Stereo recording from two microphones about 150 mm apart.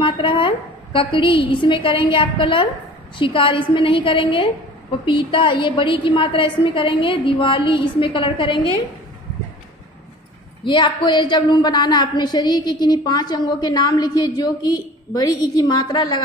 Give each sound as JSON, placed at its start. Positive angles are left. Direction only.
{"t": 0.0, "sound": "a woman's voice", "side_deg": 35}
{"t": 10.6, "sound": "a woman's voice", "side_deg": 30}